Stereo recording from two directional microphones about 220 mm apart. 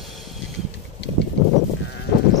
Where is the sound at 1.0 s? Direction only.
50° left (ahead or behind).